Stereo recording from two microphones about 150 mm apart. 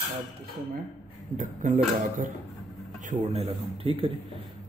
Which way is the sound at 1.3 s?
60° right (ahead or behind).